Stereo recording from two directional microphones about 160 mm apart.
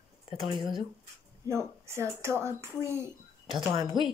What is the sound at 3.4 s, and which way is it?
Speech, 30° right (ahead or behind).